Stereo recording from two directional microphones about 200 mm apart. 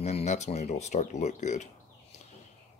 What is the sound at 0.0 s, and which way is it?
Speech, 35° left (ahead or behind).